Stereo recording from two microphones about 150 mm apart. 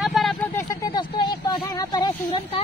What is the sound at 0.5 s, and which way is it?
Speech, 20° left (ahead or behind).